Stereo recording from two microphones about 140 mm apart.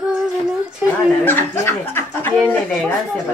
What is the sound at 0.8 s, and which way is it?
Speech, 10° right (ahead or behind).